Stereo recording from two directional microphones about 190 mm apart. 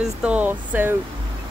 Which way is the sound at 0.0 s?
5° right (ahead or behind).